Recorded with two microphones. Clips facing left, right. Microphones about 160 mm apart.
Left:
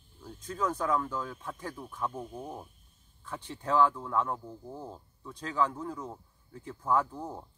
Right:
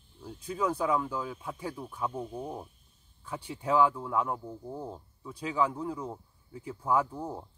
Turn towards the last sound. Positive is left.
turn(degrees=-10)  # may be behind; listen again after turning